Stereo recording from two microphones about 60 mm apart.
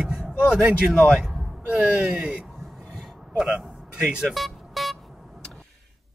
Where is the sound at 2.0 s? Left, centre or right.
Centre.